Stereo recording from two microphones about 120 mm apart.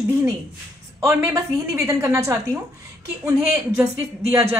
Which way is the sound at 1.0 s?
25° right (ahead or behind).